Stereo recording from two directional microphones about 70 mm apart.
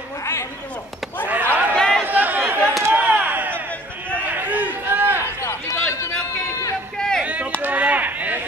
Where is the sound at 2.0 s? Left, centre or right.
Right.